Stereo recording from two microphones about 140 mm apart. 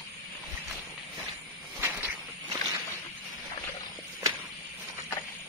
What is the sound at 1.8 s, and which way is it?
Walk, 15° right (ahead or behind).